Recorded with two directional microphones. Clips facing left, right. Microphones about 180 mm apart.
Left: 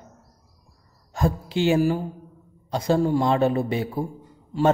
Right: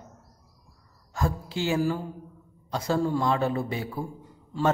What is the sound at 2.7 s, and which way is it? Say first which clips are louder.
A woman's voice: left 5 dB; 20° left (ahead or behind).